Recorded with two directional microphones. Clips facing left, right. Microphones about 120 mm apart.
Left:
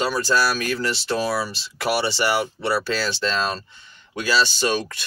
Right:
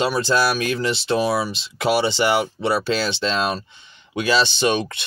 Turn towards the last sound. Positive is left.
turn(degrees=-20)  # may be behind; listen again after turning